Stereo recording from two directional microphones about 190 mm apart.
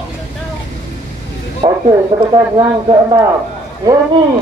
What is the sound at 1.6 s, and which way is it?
A man's voice, 25° right (ahead or behind).